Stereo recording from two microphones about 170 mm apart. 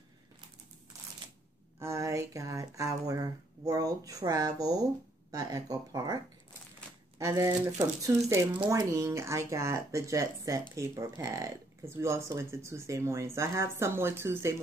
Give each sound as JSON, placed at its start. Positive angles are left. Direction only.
{"t": 1.8, "sound": "speech", "side_deg": -20}